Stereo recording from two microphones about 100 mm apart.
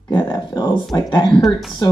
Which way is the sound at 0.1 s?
45° left (ahead or behind).